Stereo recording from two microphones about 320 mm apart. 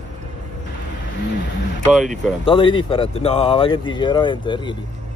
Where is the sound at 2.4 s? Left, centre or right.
Centre.